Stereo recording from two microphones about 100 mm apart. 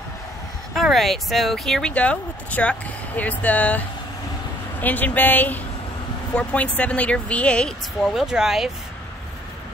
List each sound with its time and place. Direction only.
0.7 s speech: centre (ahead or behind)
4.8 s speech: 15° left (ahead or behind)
8.0 s speech: 5° right (ahead or behind)